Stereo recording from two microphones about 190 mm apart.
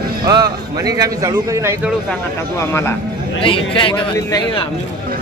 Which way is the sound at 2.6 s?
15° left (ahead or behind).